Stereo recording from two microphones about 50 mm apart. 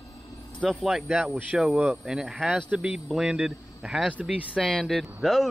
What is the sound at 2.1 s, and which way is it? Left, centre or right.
Speech, centre.